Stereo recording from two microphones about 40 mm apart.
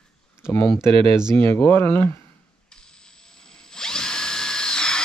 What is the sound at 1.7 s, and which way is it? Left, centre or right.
Speech, left.